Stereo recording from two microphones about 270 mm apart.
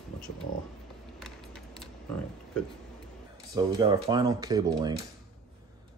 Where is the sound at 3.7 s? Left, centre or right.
Centre.